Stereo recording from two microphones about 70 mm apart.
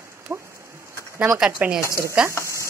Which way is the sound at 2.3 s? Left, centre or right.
Left.